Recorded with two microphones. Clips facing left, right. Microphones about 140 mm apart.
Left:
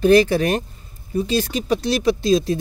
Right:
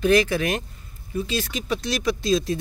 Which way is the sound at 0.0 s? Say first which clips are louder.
Left 5 dB; 30° left (ahead or behind).